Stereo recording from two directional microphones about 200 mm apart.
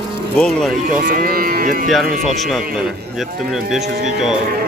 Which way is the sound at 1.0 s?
45° right (ahead or behind).